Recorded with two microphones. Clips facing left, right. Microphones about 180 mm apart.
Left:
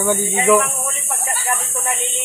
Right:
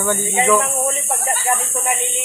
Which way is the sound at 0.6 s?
35° right (ahead or behind).